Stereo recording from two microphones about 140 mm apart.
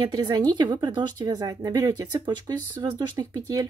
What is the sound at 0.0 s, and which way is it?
A woman's voice, 30° right (ahead or behind).